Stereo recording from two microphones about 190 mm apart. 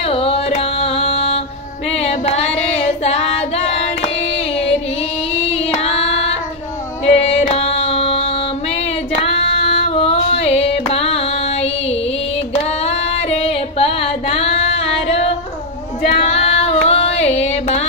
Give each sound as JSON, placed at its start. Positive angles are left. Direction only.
{"t": 0.0, "sound": "carnatic music", "side_deg": 30}
{"t": 1.9, "sound": "female singing", "side_deg": 35}
{"t": 5.3, "sound": "child singing", "side_deg": 30}
{"t": 7.2, "sound": "female singing", "side_deg": 35}
{"t": 12.6, "sound": "singing", "side_deg": 35}
{"t": 16.0, "sound": "female singing", "side_deg": 35}